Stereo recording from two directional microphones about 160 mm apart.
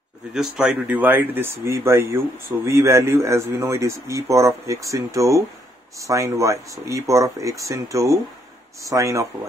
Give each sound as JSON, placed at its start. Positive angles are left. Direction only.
{"t": 0.3, "sound": "speech", "side_deg": -5}